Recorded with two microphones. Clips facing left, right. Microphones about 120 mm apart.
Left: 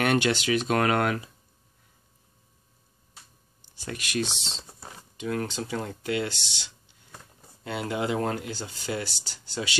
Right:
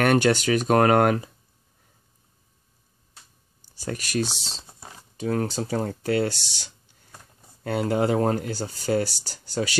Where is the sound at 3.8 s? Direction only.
40° right (ahead or behind).